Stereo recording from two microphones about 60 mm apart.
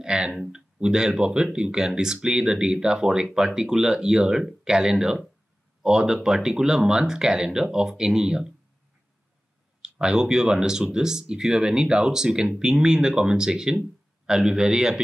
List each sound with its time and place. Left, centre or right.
0.0 s speech: centre
9.8 s speech: centre